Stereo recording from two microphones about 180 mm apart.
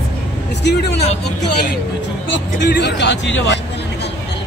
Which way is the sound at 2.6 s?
70° left (ahead or behind).